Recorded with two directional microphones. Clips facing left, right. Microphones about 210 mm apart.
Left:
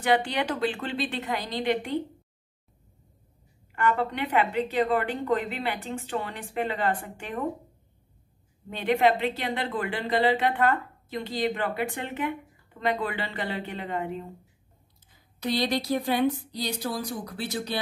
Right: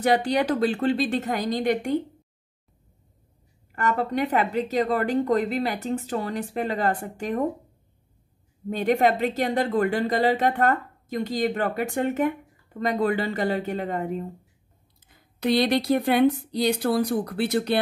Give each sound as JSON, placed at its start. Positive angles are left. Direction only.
{"t": 0.0, "sound": "a woman's voice", "side_deg": -40}
{"t": 3.7, "sound": "a woman's voice", "side_deg": -40}
{"t": 8.6, "sound": "a woman's voice", "side_deg": -40}
{"t": 15.4, "sound": "speech", "side_deg": -60}